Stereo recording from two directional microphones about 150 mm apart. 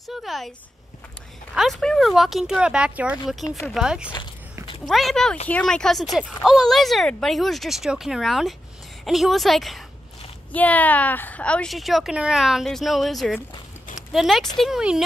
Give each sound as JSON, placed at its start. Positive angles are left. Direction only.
{"t": 0.1, "sound": "speech", "side_deg": 0}
{"t": 1.5, "sound": "speech", "side_deg": 0}
{"t": 3.4, "sound": "speech", "side_deg": 20}
{"t": 3.7, "sound": "speech", "side_deg": -5}